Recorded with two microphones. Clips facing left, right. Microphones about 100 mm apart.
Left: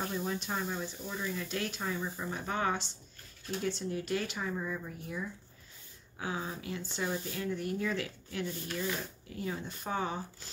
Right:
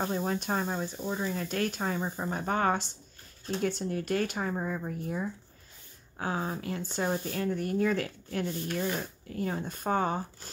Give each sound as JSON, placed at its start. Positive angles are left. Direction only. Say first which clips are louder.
{"t": 0.0, "sound": "speech", "louder": "right 5 dB", "side_deg": -45}